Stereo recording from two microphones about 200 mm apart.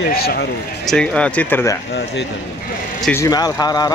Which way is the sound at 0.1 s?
50° left (ahead or behind).